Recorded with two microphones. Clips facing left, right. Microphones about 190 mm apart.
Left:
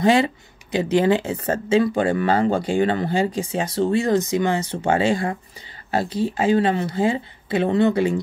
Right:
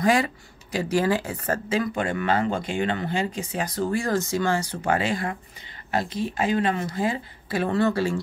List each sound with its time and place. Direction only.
0.0 s speech: 25° left (ahead or behind)